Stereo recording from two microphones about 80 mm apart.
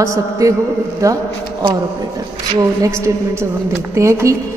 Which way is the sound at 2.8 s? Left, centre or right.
Right.